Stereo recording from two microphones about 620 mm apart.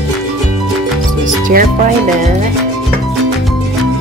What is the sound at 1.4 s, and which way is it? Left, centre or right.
Speech, centre.